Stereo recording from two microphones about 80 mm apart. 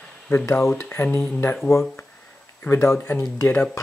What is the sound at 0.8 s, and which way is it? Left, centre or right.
Speech, left.